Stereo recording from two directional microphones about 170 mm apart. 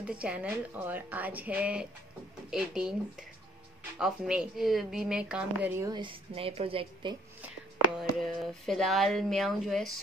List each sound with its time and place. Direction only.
0.0 s speech: 5° right (ahead or behind)
5.8 s a woman's voice: 20° right (ahead or behind)
6.3 s a woman's voice: 35° right (ahead or behind)
8.0 s speech: centre (ahead or behind)